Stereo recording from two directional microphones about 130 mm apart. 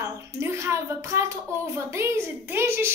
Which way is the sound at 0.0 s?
20° right (ahead or behind).